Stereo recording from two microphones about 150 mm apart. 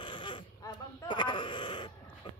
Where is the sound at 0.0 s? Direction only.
35° left (ahead or behind).